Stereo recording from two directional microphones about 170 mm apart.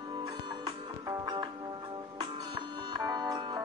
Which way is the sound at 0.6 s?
25° right (ahead or behind).